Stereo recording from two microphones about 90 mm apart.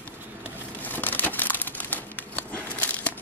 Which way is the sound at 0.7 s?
20° left (ahead or behind).